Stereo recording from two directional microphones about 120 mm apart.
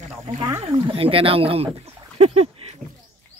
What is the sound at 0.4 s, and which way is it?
Speech, 30° right (ahead or behind).